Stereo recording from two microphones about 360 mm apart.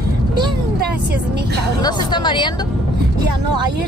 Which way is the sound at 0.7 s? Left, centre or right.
Right.